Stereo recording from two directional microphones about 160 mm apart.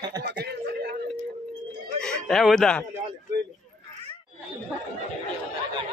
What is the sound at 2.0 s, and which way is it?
Speech, 5° left (ahead or behind).